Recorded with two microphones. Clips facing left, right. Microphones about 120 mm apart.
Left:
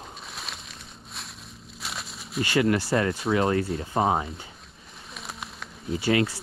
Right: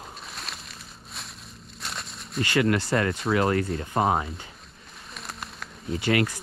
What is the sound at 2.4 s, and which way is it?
Speech, 30° left (ahead or behind).